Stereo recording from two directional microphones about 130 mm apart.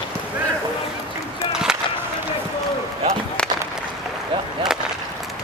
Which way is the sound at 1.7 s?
5° right (ahead or behind).